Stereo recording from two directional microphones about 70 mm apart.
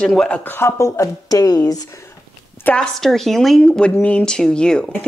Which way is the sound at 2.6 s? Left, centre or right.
Centre.